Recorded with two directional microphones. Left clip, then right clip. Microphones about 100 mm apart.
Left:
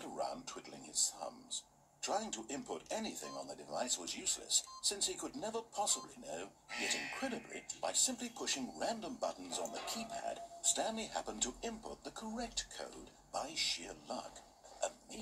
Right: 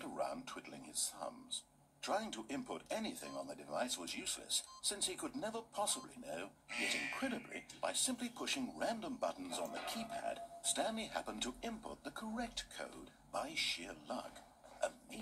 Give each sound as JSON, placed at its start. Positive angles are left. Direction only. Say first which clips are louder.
{"t": 0.2, "sound": "a sound", "louder": "even", "side_deg": 10}
{"t": 1.2, "sound": "speech", "louder": "left 1 dB", "side_deg": 10}
{"t": 6.7, "sound": "speech", "louder": "even", "side_deg": -40}
{"t": 7.8, "sound": "speech", "louder": "left 2 dB", "side_deg": 10}